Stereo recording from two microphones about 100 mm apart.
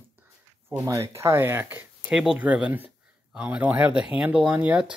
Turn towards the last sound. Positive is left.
turn(degrees=-15)  # may be behind; listen again after turning